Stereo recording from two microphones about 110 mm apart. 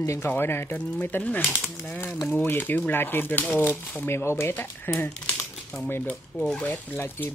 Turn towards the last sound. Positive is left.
turn(degrees=15)  # may be behind; listen again after turning